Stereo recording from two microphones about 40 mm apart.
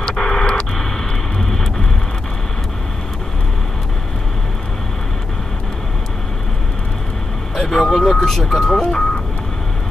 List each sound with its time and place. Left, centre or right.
0.0 s radio: centre
1.4 s vehicle: centre
7.5 s vehicle: centre
8.0 s speech: centre